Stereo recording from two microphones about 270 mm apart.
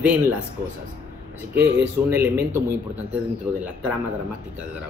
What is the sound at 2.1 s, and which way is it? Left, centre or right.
Speech, centre.